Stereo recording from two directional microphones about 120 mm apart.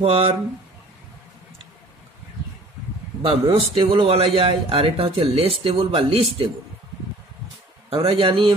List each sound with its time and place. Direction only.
0.0 s a man's voice: 50° right (ahead or behind)
3.2 s a man's voice: 50° right (ahead or behind)
7.9 s a man's voice: 50° right (ahead or behind)